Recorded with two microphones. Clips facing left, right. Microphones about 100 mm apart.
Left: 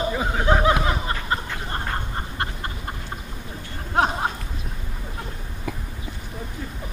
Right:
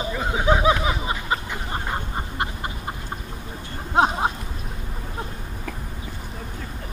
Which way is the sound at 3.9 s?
20° right (ahead or behind).